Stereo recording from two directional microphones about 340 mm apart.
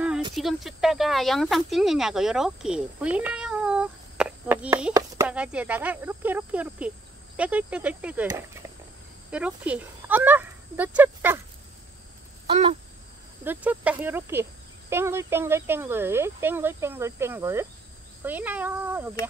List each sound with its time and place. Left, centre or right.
0.3 s speech: centre
12.4 s a sound: centre
13.4 s speech: centre